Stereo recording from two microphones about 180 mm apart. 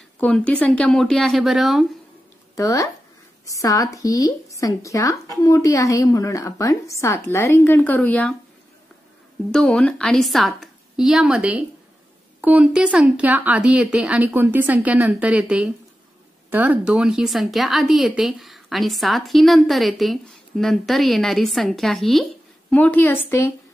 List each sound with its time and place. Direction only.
0.2 s a woman's voice: 5° left (ahead or behind)
2.5 s a woman's voice: 15° left (ahead or behind)
9.5 s a woman's voice: 5° left (ahead or behind)